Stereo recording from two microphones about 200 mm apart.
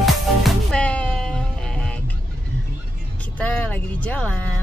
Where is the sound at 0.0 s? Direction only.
Centre (ahead or behind).